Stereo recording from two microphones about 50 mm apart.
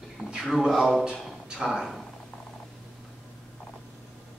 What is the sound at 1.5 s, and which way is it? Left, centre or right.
Speech, centre.